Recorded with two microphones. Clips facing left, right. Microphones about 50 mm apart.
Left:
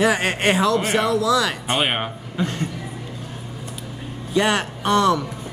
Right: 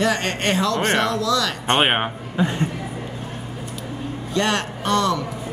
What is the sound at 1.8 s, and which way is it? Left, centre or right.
Speech, right.